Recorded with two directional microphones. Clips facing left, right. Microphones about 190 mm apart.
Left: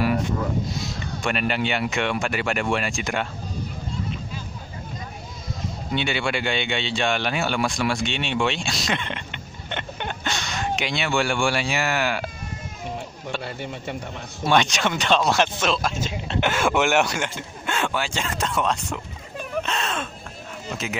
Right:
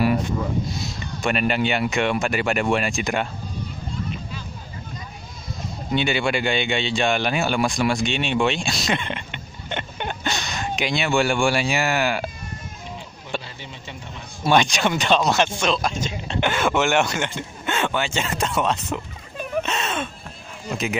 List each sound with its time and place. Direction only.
1.2 s speech: 15° right (ahead or behind)
5.9 s speech: 15° right (ahead or behind)
9.7 s a sound: 10° right (ahead or behind)
13.4 s speech: 55° left (ahead or behind)
14.4 s speech: 10° right (ahead or behind)
19.6 s a sound: 5° right (ahead or behind)
20.7 s speech: 15° right (ahead or behind)